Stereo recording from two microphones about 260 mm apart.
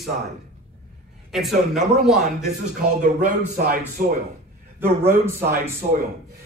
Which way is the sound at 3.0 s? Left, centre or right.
Right.